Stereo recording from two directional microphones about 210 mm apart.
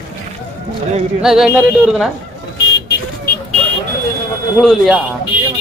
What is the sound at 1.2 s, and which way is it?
Speech, centre (ahead or behind).